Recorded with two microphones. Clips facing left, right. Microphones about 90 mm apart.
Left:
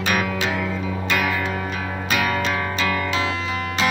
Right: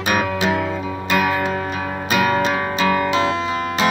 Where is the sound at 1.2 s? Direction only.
40° right (ahead or behind).